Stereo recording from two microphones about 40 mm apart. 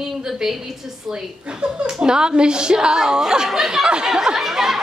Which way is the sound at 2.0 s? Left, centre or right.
Centre.